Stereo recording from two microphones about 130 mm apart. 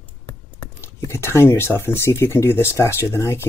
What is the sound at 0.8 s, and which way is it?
Speech, 20° left (ahead or behind).